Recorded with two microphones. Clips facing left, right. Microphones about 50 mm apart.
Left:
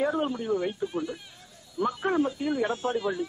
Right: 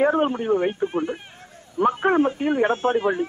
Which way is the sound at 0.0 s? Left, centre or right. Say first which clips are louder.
Right 7 dB; right.